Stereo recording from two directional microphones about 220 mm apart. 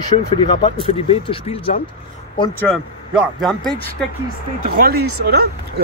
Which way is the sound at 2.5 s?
5° left (ahead or behind).